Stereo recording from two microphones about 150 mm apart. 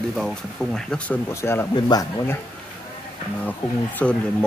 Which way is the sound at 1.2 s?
15° left (ahead or behind).